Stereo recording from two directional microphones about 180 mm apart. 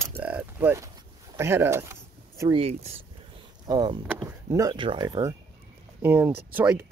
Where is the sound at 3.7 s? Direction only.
20° right (ahead or behind).